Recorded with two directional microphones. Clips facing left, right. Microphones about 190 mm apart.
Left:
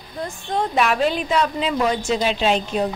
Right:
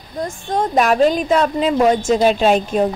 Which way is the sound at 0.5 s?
45° right (ahead or behind).